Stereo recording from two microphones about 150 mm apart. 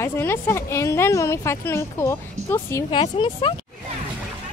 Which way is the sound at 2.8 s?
35° left (ahead or behind).